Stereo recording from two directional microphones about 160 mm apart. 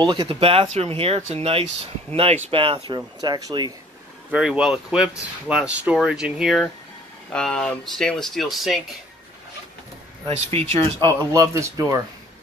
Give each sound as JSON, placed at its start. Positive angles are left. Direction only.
{"t": 0.0, "sound": "speech", "side_deg": -30}
{"t": 4.3, "sound": "speech", "side_deg": -5}
{"t": 10.7, "sound": "speech", "side_deg": -40}
{"t": 11.1, "sound": "speech", "side_deg": -20}